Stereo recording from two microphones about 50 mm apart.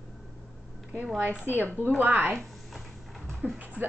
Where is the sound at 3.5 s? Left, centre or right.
Right.